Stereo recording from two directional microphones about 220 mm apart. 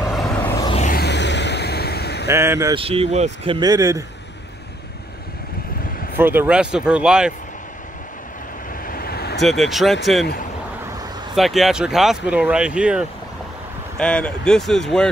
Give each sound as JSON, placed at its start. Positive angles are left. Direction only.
{"t": 0.1, "sound": "vehicle", "side_deg": 5}
{"t": 0.7, "sound": "a sound", "side_deg": 30}
{"t": 0.9, "sound": "vehicle", "side_deg": 50}
{"t": 2.2, "sound": "speech", "side_deg": -10}
{"t": 2.7, "sound": "speech", "side_deg": -25}
{"t": 6.1, "sound": "speech", "side_deg": -10}
{"t": 8.8, "sound": "vehicle", "side_deg": 45}
{"t": 9.4, "sound": "speech", "side_deg": 0}
{"t": 11.3, "sound": "speech", "side_deg": 0}